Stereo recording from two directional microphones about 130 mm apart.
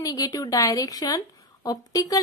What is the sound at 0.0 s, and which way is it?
A woman's voice, 30° left (ahead or behind).